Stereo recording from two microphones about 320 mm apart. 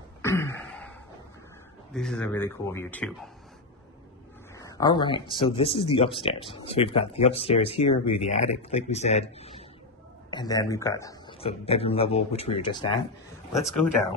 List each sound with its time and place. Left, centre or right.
0.2 s a sound: centre
2.0 s speech: centre
4.6 s a man's voice: centre
13.5 s speech: centre